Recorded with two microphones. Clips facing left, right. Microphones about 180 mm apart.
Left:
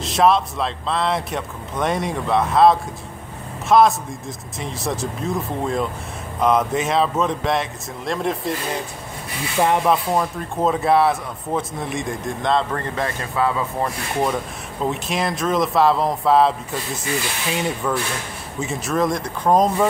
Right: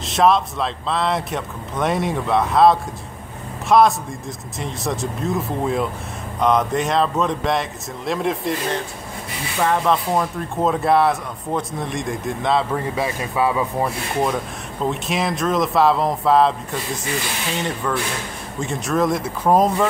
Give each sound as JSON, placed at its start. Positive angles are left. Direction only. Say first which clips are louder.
{"t": 0.0, "sound": "a man's voice", "louder": "even", "side_deg": 0}
{"t": 9.6, "sound": "speech", "louder": "left 1 dB", "side_deg": 20}
{"t": 10.1, "sound": "speech", "louder": "even", "side_deg": 0}
{"t": 14.2, "sound": "speech", "louder": "left 1 dB", "side_deg": 0}
{"t": 17.8, "sound": "speech", "louder": "even", "side_deg": 5}